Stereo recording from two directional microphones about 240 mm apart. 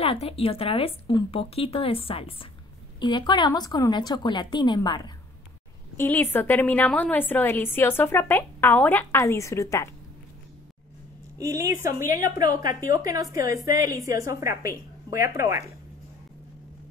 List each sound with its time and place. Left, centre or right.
0.0 s a woman's voice: left
11.3 s a woman's voice: centre